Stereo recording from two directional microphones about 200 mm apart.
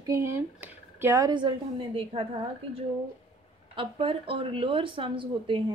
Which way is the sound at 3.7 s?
25° right (ahead or behind).